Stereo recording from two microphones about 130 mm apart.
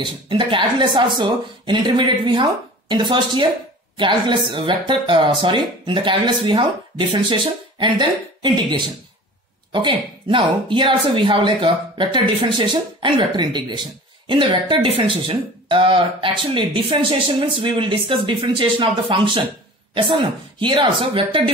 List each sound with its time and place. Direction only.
0.0 s speech: 40° right (ahead or behind)